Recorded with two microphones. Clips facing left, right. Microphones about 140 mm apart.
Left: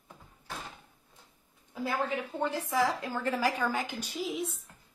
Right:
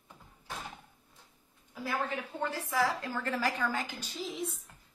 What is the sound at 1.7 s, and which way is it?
A woman's voice, 15° left (ahead or behind).